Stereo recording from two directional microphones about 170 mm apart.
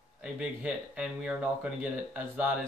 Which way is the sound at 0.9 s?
5° right (ahead or behind).